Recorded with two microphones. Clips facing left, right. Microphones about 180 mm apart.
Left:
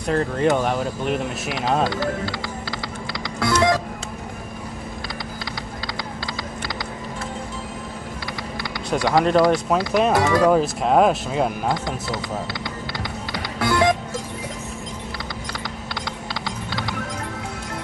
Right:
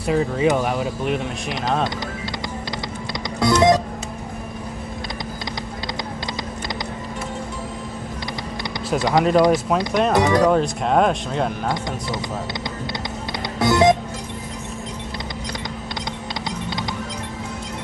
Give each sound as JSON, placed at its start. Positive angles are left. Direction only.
{"t": 0.0, "sound": "speech", "side_deg": -5}
{"t": 1.9, "sound": "speech", "side_deg": -20}
{"t": 3.3, "sound": "music", "side_deg": -20}
{"t": 9.1, "sound": "speech", "side_deg": -5}
{"t": 10.1, "sound": "speech", "side_deg": -20}
{"t": 10.5, "sound": "speech", "side_deg": 5}
{"t": 13.3, "sound": "music", "side_deg": -20}
{"t": 16.4, "sound": "music", "side_deg": -20}